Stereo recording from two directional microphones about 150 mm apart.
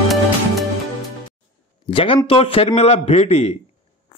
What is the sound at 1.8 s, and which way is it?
A man's voice, 35° left (ahead or behind).